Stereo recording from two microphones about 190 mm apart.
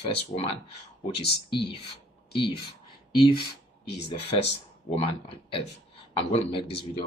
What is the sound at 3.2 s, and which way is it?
Speech, 25° left (ahead or behind).